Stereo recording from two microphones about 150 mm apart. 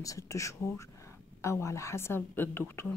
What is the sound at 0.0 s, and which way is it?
Speech, 20° left (ahead or behind).